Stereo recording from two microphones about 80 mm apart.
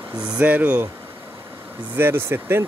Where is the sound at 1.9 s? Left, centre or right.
Right.